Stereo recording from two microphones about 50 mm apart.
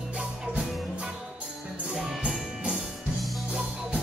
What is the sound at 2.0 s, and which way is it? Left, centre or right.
Music, centre.